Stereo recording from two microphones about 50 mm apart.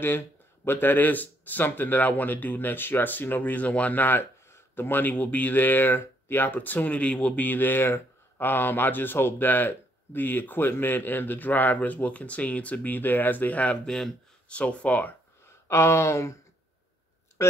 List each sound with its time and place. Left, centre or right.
0.7 s speech: left
4.2 s speech: left
7.4 s speech: left
13.8 s speech: centre
14.5 s speech: left
15.4 s speech: left
17.4 s speech: left